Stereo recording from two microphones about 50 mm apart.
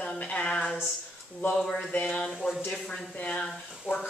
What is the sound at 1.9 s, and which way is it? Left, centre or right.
Speech, left.